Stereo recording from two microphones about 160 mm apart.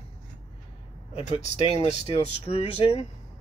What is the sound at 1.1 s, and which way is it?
Speech, 40° left (ahead or behind).